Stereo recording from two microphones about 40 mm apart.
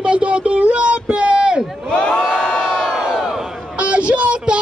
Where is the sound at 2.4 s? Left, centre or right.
Centre.